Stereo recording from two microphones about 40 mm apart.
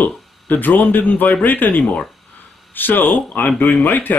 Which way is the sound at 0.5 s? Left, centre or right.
Left.